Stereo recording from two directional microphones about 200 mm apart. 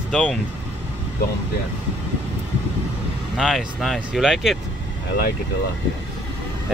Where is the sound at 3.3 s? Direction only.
Centre (ahead or behind).